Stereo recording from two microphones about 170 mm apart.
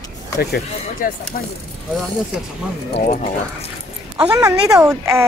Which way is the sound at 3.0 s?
45° left (ahead or behind).